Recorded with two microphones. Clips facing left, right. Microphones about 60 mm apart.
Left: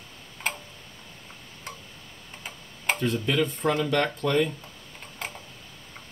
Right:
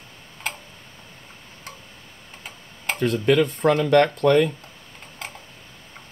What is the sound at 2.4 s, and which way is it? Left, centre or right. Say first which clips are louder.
Tick-tock: left 1 dB; centre.